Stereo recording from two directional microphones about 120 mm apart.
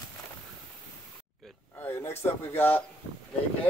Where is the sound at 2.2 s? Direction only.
20° left (ahead or behind).